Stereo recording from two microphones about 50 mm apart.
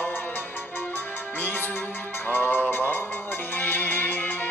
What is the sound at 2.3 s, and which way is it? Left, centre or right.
Music, left.